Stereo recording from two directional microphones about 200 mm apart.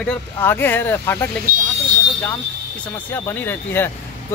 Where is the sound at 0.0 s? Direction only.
5° left (ahead or behind).